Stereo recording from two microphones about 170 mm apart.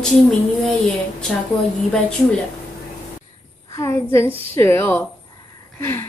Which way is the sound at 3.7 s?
15° left (ahead or behind).